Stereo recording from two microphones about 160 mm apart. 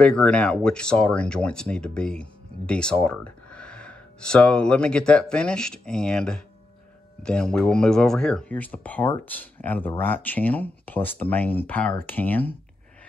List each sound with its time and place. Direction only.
0.0 s speech: 5° left (ahead or behind)